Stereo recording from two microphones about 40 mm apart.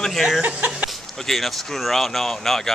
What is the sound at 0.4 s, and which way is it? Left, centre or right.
Speech, right.